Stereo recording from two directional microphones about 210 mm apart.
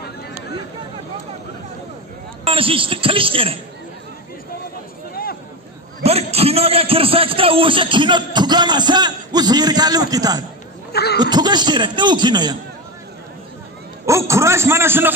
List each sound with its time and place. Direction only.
2.4 s a woman's voice: 25° right (ahead or behind)
6.0 s a man's voice: 30° right (ahead or behind)
10.9 s a sound: 50° left (ahead or behind)
11.1 s speech: 20° right (ahead or behind)
14.0 s a man's voice: 15° right (ahead or behind)